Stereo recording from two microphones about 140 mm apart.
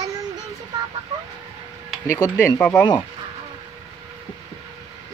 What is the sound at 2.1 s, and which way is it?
Speech, 20° left (ahead or behind).